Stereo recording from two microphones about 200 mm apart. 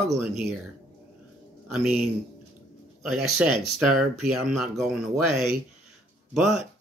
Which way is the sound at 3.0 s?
Centre (ahead or behind).